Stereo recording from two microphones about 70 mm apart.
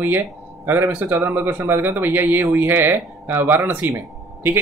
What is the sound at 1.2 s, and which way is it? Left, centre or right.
Speech, right.